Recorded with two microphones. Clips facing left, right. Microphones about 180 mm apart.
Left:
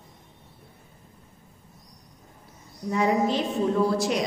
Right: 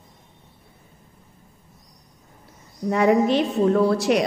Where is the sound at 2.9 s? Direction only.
70° right (ahead or behind).